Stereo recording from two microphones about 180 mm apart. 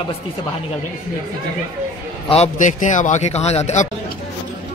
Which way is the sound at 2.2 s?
35° left (ahead or behind).